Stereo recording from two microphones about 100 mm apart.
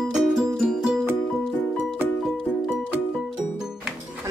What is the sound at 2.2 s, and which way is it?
Music, centre (ahead or behind).